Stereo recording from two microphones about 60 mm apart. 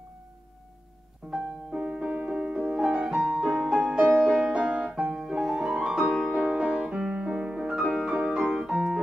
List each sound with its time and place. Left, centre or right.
1.3 s music: centre
4.4 s piano: centre
5.0 s music: centre